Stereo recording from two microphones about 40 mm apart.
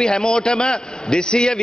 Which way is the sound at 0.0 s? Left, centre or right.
Centre.